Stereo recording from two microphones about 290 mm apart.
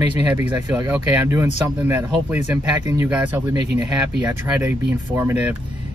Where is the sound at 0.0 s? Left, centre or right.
Centre.